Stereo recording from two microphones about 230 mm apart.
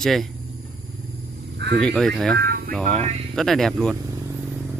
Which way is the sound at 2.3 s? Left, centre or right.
Right.